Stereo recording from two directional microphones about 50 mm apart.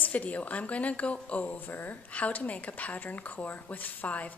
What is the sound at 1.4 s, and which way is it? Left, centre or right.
A woman's voice, left.